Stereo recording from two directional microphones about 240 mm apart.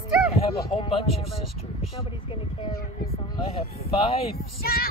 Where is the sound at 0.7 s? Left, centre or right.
Left.